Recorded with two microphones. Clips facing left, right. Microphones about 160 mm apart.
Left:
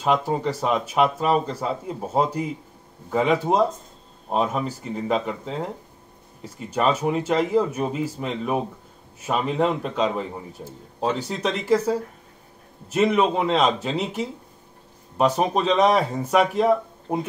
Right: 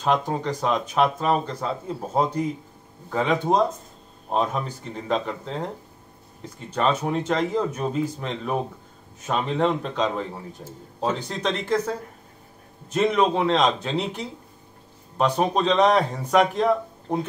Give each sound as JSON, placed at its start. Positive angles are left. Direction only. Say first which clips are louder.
{"t": 0.0, "sound": "speech", "louder": "left 1 dB", "side_deg": 5}